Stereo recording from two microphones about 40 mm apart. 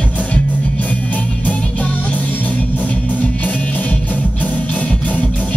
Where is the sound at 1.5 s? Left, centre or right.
Left.